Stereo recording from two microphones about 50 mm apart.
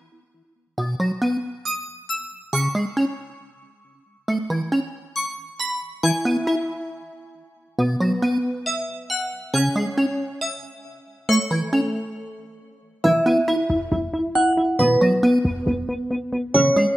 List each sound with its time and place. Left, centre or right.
0.7 s music: centre
4.3 s music: centre
11.2 s music: centre
13.0 s music: centre